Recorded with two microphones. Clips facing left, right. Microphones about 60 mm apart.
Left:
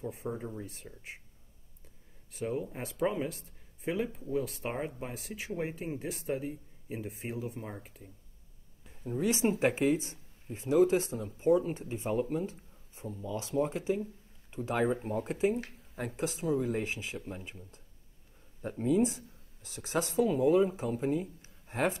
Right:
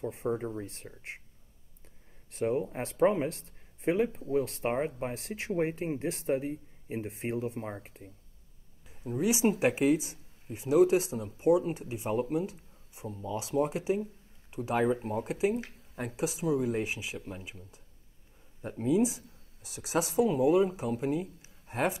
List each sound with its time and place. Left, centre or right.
0.4 s speech: right
2.5 s speech: right
7.1 s speech: right
7.5 s speech: right
8.8 s speech: centre
13.1 s speech: right
13.5 s speech: centre
18.6 s speech: centre